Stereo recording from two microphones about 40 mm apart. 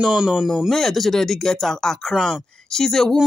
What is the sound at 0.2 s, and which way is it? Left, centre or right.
Speech, centre.